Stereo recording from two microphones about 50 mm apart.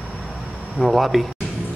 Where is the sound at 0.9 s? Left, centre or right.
Centre.